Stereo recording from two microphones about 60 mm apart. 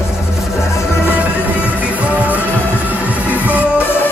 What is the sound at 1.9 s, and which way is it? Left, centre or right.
Music, right.